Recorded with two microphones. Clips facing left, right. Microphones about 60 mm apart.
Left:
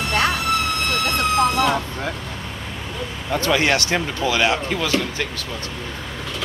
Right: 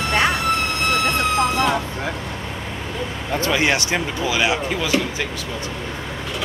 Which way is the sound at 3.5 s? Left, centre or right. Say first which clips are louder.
Left 1 dB; centre.